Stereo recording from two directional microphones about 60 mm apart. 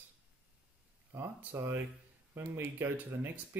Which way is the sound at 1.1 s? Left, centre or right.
Right.